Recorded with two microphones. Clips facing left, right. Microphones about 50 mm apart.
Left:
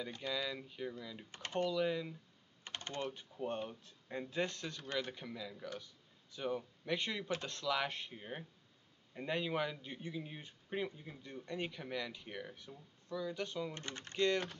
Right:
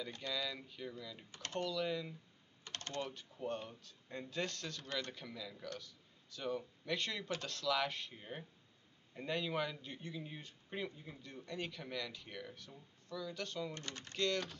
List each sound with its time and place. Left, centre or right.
0.1 s speech: centre
2.7 s typing: centre
3.2 s speech: centre
11.4 s speech: centre
13.7 s speech: left
14.1 s speech: centre